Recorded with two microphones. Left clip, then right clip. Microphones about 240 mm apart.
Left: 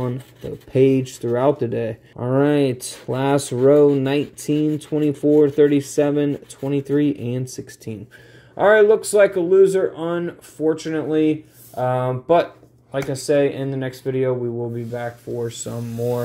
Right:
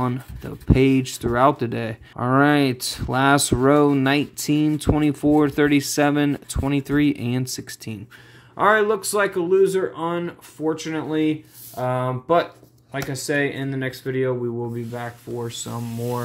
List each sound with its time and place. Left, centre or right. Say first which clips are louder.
0.0 s speech: right 1 dB; centre